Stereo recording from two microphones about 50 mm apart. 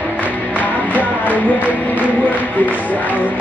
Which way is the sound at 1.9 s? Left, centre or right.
Left.